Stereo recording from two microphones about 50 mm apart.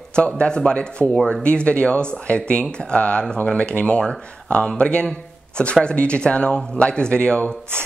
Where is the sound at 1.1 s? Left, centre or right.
Centre.